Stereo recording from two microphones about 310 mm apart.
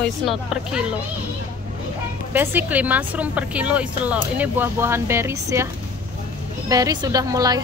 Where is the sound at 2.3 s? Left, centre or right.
Centre.